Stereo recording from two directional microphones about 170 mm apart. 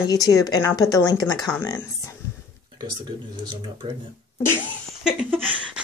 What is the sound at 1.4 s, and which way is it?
Speech, 5° left (ahead or behind).